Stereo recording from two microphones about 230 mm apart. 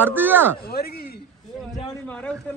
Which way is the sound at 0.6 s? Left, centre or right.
Left.